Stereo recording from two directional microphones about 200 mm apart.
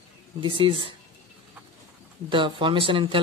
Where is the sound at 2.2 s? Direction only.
25° right (ahead or behind).